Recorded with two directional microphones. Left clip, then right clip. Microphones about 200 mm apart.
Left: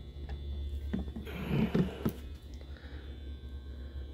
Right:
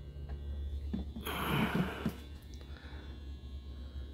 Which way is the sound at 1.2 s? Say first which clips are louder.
Right 4 dB; 40° right (ahead or behind).